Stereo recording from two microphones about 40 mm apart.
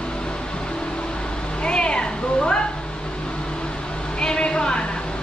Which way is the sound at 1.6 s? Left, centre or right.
Left.